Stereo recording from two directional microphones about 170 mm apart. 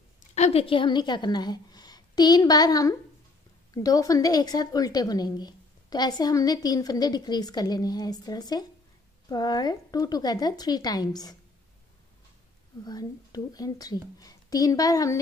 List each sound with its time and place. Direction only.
0.3 s a woman's voice: 40° left (ahead or behind); by 11.3 s 25° left (ahead or behind)
12.8 s a woman's voice: 20° left (ahead or behind)